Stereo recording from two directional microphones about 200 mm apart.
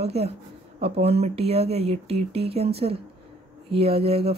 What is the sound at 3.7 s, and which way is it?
Speech, 30° right (ahead or behind).